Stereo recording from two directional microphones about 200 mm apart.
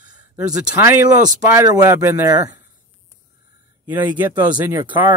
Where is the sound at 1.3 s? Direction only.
15° right (ahead or behind).